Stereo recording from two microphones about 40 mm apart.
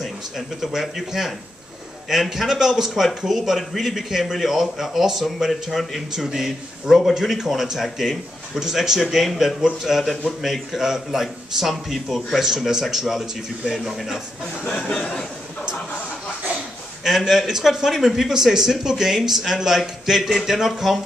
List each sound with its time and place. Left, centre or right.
0.6 s speech: centre
14.7 s speech: centre
17.0 s speech: centre